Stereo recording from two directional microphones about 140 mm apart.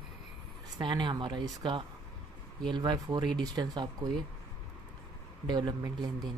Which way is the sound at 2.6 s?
35° right (ahead or behind).